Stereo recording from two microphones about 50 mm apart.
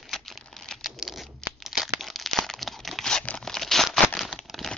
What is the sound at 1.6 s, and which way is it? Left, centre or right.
Crumpling, centre.